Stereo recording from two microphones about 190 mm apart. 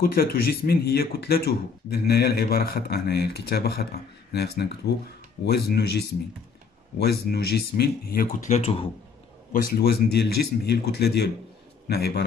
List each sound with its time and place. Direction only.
0.0 s speech: 50° left (ahead or behind); by 8.8 s 35° left (ahead or behind)
9.5 s speech: 50° left (ahead or behind)